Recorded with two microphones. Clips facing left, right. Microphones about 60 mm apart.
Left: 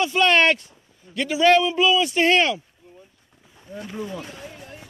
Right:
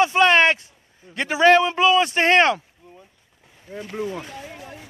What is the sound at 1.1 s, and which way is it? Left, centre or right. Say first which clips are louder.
A man's voice: right 2 dB; right.